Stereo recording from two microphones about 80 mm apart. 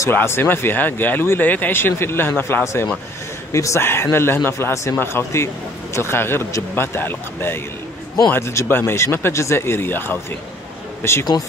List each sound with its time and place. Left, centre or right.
0.1 s speech: left